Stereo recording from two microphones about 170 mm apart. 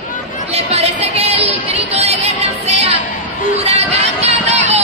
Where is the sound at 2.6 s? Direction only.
40° right (ahead or behind).